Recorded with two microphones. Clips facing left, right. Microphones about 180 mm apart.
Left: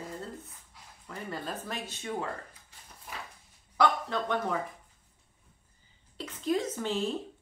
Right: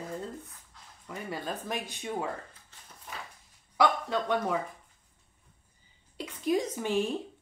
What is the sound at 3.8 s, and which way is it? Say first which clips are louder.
Speech: right 1 dB; 10° right (ahead or behind).